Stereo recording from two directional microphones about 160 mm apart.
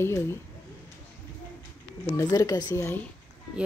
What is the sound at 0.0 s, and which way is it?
Speech, 15° left (ahead or behind).